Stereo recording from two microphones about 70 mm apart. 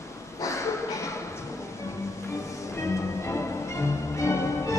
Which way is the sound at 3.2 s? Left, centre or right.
Left.